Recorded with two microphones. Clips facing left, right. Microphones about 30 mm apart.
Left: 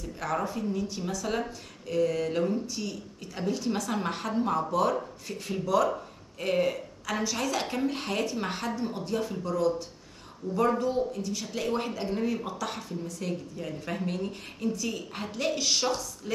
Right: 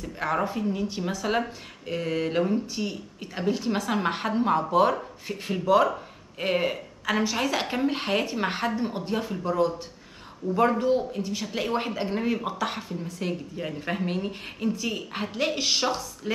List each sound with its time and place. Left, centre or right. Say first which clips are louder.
0.0 s speech: right 4 dB; right